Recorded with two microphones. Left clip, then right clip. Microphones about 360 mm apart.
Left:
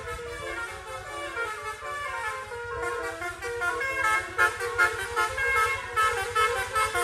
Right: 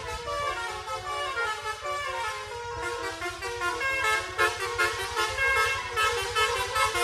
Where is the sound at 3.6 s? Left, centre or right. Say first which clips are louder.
Even; centre.